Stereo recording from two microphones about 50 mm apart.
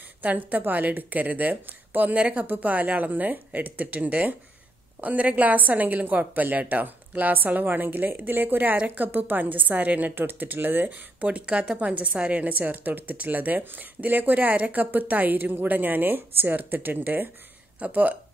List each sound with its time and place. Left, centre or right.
0.2 s a woman's voice: right
2.1 s speech: right
2.4 s a woman's voice: right